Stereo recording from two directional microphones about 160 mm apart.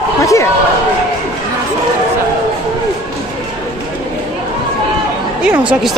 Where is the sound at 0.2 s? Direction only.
20° left (ahead or behind).